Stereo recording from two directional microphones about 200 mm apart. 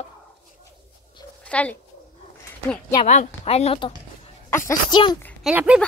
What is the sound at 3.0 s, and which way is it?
A woman's voice, 35° left (ahead or behind).